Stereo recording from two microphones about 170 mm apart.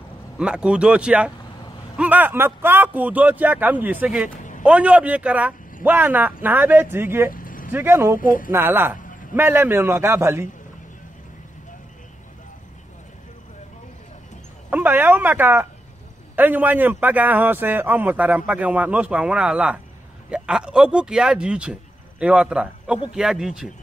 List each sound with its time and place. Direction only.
0.4 s a man's voice: 5° right (ahead or behind)
4.4 s a sound: 50° left (ahead or behind)
4.6 s a man's voice: 10° right (ahead or behind)
7.3 s vehicle: 55° left (ahead or behind)
7.7 s a man's voice: 15° right (ahead or behind)
8.2 s speech: 55° left (ahead or behind)
8.5 s a man's voice: 15° right (ahead or behind)
14.7 s a man's voice: 10° right (ahead or behind)